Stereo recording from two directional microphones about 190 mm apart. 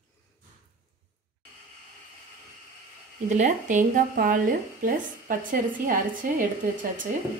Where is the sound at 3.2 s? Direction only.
40° right (ahead or behind).